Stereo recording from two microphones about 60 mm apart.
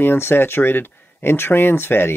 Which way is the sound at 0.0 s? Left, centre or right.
Left.